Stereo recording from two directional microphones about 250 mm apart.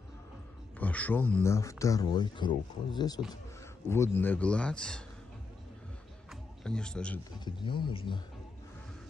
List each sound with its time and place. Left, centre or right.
0.7 s a man's voice: centre
6.6 s a man's voice: centre
7.3 s speech: centre